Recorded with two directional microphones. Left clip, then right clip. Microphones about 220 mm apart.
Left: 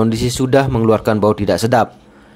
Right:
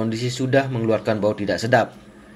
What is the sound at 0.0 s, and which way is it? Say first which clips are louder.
A man's voice: left 8 dB; 45° left (ahead or behind).